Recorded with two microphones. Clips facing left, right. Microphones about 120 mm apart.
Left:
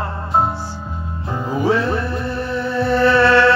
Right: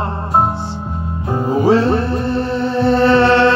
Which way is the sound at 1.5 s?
30° right (ahead or behind).